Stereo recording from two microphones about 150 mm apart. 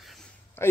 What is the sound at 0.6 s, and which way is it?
Speech, 15° left (ahead or behind).